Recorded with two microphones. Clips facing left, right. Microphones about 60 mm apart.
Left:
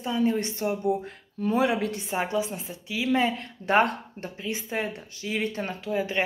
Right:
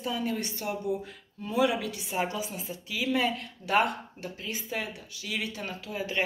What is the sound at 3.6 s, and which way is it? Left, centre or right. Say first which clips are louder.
Speech: left 4 dB; left.